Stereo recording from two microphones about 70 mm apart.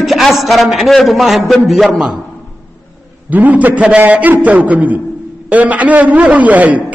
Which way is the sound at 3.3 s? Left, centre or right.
Right.